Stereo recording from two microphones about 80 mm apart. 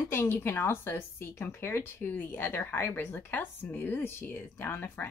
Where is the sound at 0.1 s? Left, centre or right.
Left.